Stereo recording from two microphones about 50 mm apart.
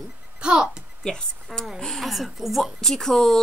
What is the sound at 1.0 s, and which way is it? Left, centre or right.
A woman's voice, centre.